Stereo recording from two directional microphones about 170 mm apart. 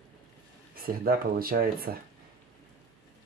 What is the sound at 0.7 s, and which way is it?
Speech, 60° right (ahead or behind).